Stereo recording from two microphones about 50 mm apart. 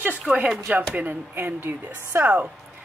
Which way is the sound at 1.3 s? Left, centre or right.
Right.